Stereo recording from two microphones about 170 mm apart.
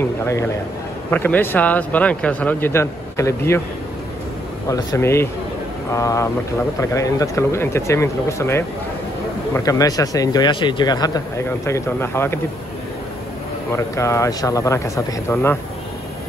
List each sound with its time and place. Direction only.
1.1 s speech: 10° left (ahead or behind)
4.6 s speech: 20° left (ahead or behind)
13.7 s speech: 15° left (ahead or behind)